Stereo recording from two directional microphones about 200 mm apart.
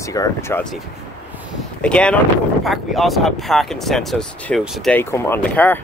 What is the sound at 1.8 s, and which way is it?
Speech, 5° left (ahead or behind).